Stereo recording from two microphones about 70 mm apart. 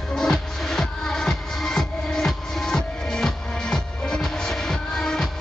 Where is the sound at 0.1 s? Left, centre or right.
Centre.